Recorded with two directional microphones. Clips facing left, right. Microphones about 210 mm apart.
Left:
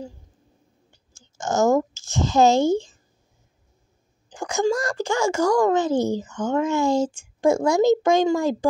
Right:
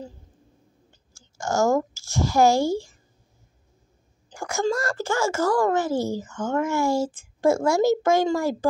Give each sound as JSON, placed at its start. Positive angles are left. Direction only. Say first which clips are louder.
{"t": 1.1, "sound": "speech", "louder": "left 1 dB", "side_deg": 20}
{"t": 4.3, "sound": "a child's voice", "louder": "left 3 dB", "side_deg": 15}